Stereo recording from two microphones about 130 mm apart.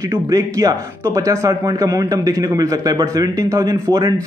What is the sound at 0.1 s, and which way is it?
Speech, 25° right (ahead or behind).